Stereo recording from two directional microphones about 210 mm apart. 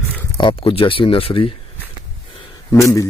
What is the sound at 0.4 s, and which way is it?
Speech, 25° left (ahead or behind).